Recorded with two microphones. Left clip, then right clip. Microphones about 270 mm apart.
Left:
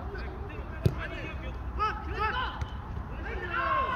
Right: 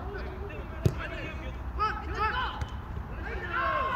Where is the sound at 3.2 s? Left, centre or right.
Centre.